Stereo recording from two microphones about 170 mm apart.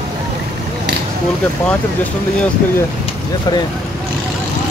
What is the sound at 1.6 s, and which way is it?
Speech, 10° left (ahead or behind).